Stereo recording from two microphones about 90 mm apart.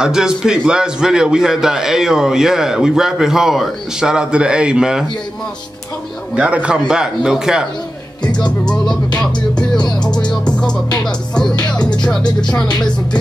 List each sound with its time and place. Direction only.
0.0 s a man's voice: 5° right (ahead or behind)
6.3 s a man's voice: 15° right (ahead or behind)
8.4 s music: 10° left (ahead or behind)
9.8 s music: 50° left (ahead or behind)
10.3 s music: 10° left (ahead or behind)
12.2 s music: 50° left (ahead or behind)